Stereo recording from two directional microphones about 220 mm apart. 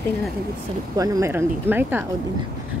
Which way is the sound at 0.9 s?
15° right (ahead or behind).